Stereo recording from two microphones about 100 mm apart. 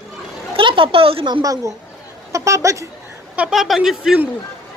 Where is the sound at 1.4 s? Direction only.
35° right (ahead or behind).